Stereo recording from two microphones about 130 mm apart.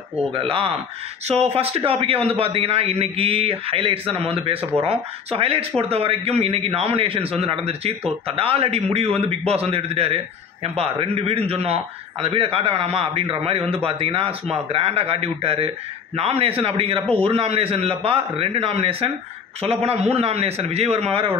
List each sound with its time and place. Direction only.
0.3 s a man's voice: 45° right (ahead or behind)